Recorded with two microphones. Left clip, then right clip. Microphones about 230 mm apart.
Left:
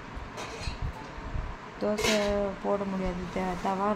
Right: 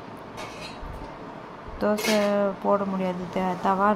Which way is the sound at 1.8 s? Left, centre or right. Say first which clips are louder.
Right 4 dB; centre.